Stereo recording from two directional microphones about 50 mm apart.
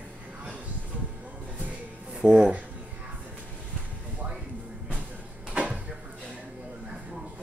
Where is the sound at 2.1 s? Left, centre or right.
Centre.